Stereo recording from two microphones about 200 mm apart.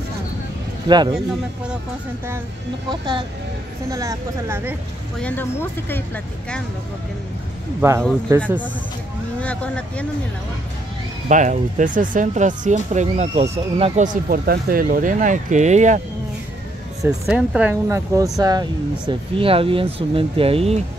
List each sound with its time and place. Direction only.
0.8 s speech: 20° right (ahead or behind)
2.9 s speech: 25° right (ahead or behind)
5.2 s speech: 10° left (ahead or behind)
7.8 s speech: 15° right (ahead or behind)
9.4 s speech: 5° left (ahead or behind)
11.2 s speech: 40° right (ahead or behind)
14.0 s speech: 50° right (ahead or behind)
17.3 s speech: 5° right (ahead or behind); by 20.8 s 30° right (ahead or behind)